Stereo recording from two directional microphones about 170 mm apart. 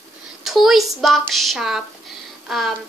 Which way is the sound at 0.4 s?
Centre (ahead or behind).